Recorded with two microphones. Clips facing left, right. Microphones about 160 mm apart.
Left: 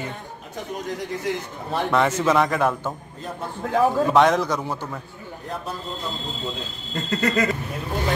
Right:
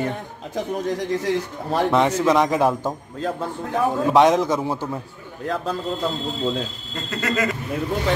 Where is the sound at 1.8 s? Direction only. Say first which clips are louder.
Right 1 dB; 15° right (ahead or behind).